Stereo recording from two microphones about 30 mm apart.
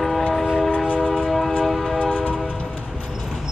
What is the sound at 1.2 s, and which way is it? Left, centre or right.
Train, centre.